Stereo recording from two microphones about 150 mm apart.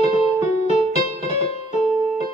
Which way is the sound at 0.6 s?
50° left (ahead or behind).